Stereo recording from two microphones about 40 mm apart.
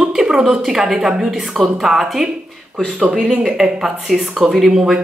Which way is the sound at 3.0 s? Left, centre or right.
Right.